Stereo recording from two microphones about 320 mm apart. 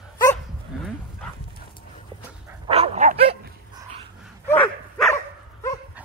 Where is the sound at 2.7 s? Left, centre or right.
Right.